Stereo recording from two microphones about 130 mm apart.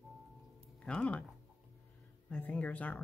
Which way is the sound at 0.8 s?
5° left (ahead or behind).